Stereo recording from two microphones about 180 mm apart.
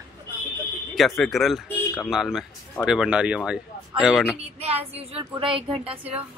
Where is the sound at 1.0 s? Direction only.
Centre (ahead or behind).